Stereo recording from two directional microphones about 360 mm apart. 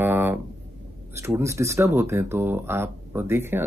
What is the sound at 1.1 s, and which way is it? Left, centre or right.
Speech, centre.